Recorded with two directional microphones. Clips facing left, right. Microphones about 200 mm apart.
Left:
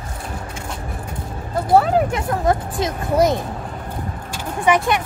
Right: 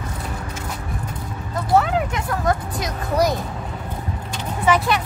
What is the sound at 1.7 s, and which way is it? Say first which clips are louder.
Vehicle: left 3 dB; 35° left (ahead or behind).